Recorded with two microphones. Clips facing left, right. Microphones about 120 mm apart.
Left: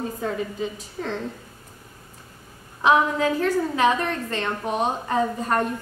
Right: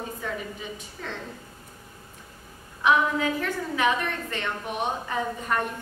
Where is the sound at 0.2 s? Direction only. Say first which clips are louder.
Left 7 dB; 35° left (ahead or behind).